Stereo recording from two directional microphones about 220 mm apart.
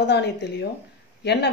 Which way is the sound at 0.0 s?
50° left (ahead or behind).